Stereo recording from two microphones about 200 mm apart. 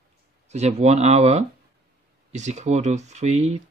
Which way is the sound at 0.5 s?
35° right (ahead or behind).